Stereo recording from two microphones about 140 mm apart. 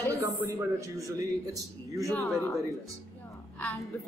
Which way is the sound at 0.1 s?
20° right (ahead or behind).